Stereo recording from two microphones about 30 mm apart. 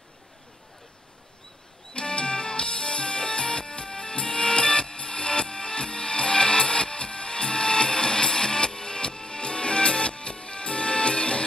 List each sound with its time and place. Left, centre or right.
2.0 s music: left